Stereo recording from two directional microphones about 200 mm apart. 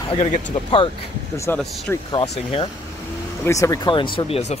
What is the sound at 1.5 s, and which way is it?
Speech, 10° left (ahead or behind).